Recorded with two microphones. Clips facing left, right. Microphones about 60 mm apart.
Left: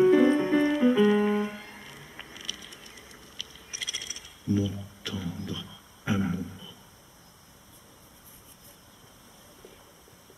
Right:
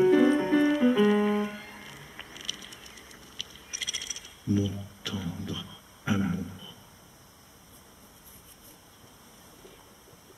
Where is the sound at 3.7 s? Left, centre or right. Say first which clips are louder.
Even; centre.